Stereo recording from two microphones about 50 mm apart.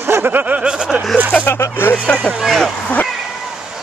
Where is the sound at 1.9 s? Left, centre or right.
Centre.